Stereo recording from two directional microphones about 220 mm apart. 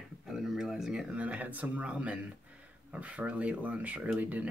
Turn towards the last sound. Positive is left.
turn(degrees=-5)  # may be behind; listen again after turning